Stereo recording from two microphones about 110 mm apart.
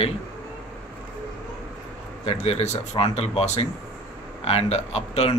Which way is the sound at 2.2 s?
70° left (ahead or behind).